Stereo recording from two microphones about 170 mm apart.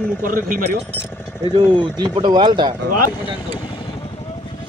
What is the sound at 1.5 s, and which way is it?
Speech, 30° right (ahead or behind).